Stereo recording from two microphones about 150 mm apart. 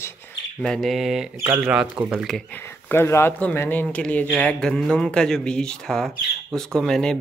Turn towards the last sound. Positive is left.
turn(degrees=5)  # may be behind; listen again after turning